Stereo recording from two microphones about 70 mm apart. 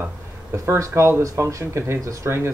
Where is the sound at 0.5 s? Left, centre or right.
Right.